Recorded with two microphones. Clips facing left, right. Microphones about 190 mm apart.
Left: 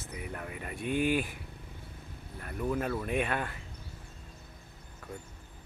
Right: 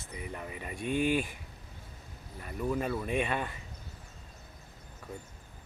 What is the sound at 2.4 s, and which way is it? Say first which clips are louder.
Speech: even; centre (ahead or behind).